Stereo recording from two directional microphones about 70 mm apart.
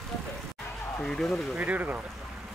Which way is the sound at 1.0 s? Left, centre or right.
Centre.